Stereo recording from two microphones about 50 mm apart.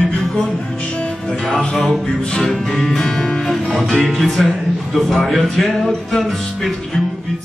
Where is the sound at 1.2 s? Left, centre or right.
Centre.